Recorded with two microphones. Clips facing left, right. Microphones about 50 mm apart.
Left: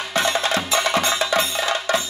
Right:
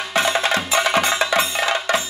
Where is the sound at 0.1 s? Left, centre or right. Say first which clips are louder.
Right 2 dB; centre.